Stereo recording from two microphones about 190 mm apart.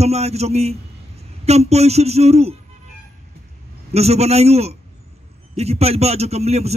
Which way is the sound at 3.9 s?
35° right (ahead or behind).